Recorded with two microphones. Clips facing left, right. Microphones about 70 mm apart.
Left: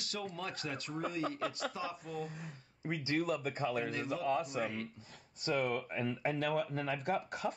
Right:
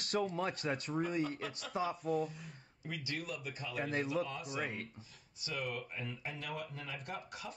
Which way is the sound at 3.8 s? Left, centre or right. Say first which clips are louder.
Right 1 dB; right.